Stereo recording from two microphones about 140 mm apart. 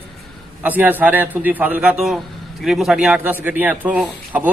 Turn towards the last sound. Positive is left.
turn(degrees=-10)  # may be behind; listen again after turning